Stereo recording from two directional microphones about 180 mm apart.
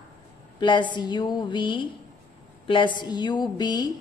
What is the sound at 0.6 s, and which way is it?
A woman's voice, 25° left (ahead or behind).